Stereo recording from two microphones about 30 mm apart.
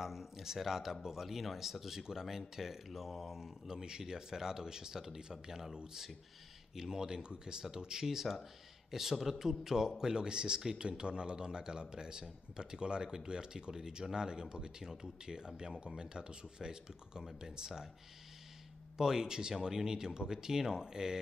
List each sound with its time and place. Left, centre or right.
0.0 s speech: centre
6.7 s a man's voice: centre
18.9 s a man's voice: centre